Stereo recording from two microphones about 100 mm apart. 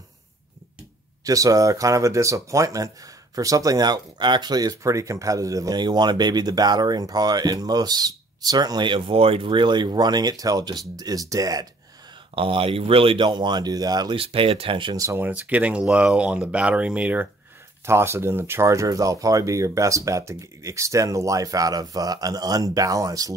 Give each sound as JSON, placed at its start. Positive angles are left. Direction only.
{"t": 1.2, "sound": "speech", "side_deg": -35}
{"t": 12.4, "sound": "speech", "side_deg": -65}
{"t": 14.1, "sound": "speech", "side_deg": -70}
{"t": 15.0, "sound": "speech", "side_deg": -30}
{"t": 15.2, "sound": "speech", "side_deg": -15}
{"t": 17.8, "sound": "speech", "side_deg": -25}